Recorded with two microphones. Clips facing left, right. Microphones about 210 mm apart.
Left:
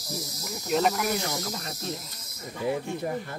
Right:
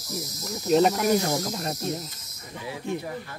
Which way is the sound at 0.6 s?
35° right (ahead or behind).